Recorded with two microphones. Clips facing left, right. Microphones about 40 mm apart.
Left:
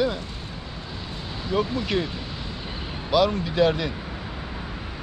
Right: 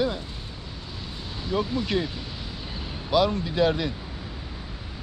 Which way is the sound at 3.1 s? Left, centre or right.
Centre.